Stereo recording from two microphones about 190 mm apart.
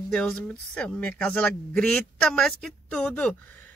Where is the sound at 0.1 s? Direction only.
5° left (ahead or behind).